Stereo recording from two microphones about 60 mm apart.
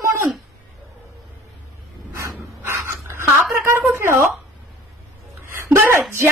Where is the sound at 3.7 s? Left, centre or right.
Right.